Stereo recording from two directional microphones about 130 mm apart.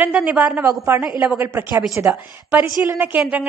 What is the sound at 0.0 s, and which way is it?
A woman's voice, 10° right (ahead or behind).